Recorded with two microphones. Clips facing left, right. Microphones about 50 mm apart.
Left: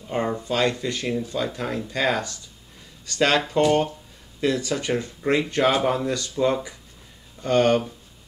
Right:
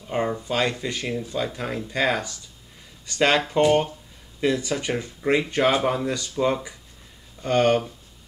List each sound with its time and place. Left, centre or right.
0.0 s speech: centre